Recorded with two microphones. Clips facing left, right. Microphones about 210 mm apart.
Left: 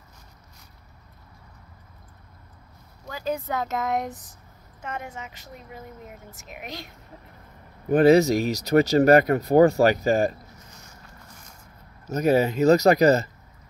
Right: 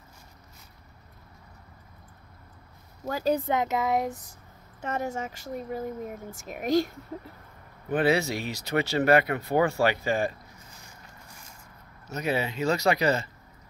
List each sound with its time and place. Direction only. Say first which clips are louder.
3.1 s speech: right 3 dB; 40° right (ahead or behind)
3.5 s speech: right 1 dB; 10° right (ahead or behind)
4.8 s speech: right 5 dB; 40° right (ahead or behind)
7.9 s speech: left 8 dB; 40° left (ahead or behind)
12.1 s speech: left 8 dB; 45° left (ahead or behind)